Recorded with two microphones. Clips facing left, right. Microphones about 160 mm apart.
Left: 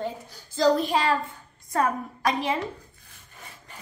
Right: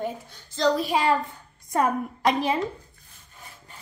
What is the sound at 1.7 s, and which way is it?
Speech, 20° right (ahead or behind).